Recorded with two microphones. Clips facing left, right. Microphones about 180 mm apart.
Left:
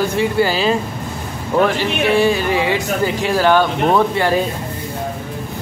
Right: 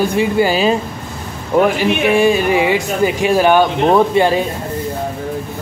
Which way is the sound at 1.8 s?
15° right (ahead or behind).